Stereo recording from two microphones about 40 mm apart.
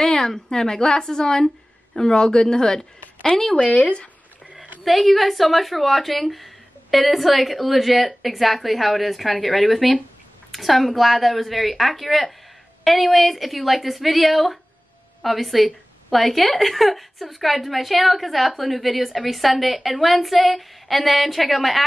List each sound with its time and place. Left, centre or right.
0.0 s a woman's voice: centre
3.5 s speech: left
4.8 s a woman's voice: centre